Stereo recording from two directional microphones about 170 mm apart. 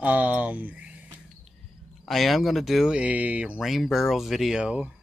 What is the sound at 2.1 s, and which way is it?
Speech, centre (ahead or behind).